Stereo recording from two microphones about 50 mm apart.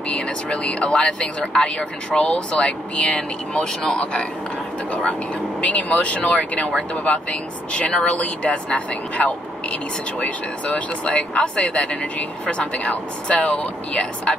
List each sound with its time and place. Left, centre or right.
0.1 s speech: centre
5.6 s speech: left